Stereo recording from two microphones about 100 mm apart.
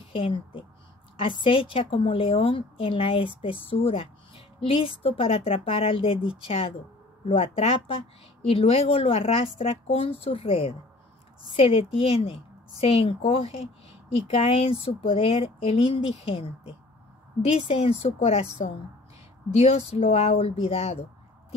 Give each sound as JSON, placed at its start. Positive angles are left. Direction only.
{"t": 0.1, "sound": "a woman's voice", "side_deg": 60}
{"t": 17.5, "sound": "speech", "side_deg": 85}